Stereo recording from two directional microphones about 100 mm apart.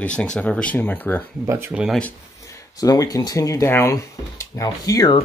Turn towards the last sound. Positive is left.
turn(degrees=40)  # may be behind; listen again after turning